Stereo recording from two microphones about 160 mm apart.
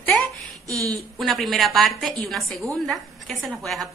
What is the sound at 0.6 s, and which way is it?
Speech, 20° right (ahead or behind).